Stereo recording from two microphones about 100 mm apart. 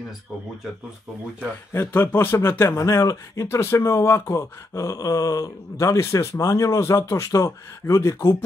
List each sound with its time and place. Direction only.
1.7 s speech: 20° left (ahead or behind)